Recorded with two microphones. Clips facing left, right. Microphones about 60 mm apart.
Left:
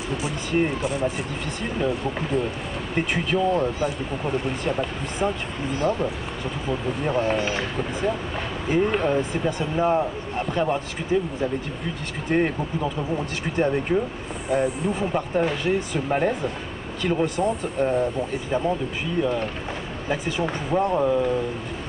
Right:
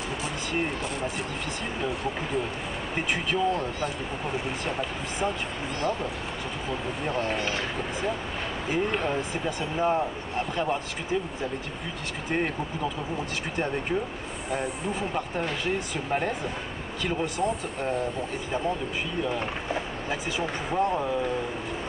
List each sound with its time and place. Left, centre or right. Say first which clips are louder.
0.2 s speech: left 7 dB; centre
12.3 s speech: left 6 dB; centre
20.1 s speech: left 7 dB; centre